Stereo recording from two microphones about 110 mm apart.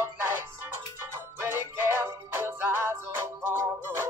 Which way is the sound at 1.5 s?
20° right (ahead or behind).